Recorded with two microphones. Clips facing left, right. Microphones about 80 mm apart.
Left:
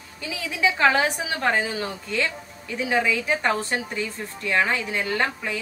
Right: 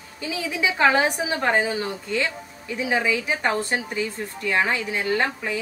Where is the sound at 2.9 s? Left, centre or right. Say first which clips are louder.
Left 1 dB; centre.